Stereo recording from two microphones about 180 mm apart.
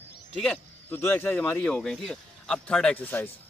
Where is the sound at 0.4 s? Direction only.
10° left (ahead or behind).